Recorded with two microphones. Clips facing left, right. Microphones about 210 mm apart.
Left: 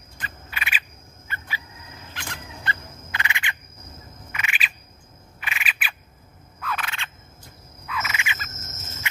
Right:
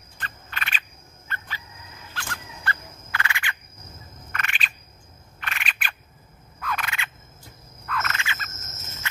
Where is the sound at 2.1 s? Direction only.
20° left (ahead or behind).